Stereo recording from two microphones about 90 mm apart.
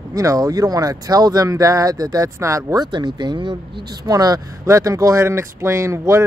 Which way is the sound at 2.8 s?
55° right (ahead or behind).